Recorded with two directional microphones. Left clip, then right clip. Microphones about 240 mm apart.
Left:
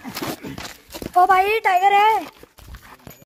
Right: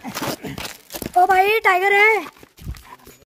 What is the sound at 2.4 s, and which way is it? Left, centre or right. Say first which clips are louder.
Dog: left 1 dB; right.